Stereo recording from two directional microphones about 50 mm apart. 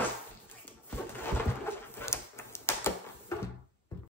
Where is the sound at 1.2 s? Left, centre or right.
Left.